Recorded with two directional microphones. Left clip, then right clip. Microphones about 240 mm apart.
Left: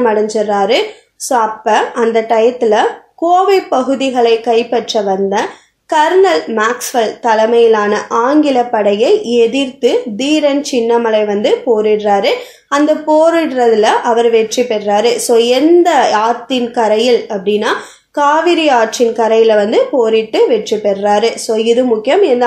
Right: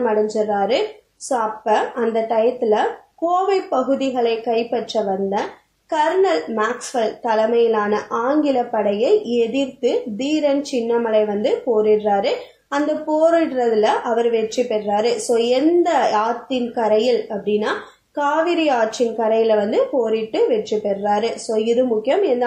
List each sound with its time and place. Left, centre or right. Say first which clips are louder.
0.0 s speech: left 6 dB; left